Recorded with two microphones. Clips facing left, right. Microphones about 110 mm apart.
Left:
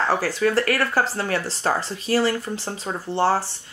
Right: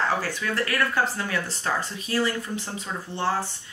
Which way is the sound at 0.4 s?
40° left (ahead or behind).